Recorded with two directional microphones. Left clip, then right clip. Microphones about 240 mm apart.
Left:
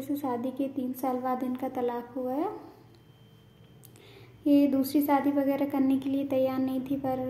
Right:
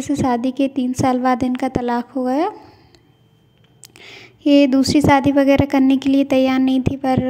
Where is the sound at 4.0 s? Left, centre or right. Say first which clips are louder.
Right 11 dB; right.